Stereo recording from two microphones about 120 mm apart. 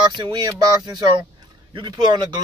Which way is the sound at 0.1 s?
40° right (ahead or behind).